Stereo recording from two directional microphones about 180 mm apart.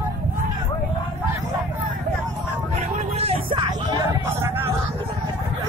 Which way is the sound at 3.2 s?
30° right (ahead or behind).